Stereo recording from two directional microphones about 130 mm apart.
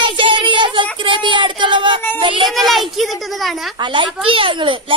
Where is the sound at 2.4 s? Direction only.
Centre (ahead or behind).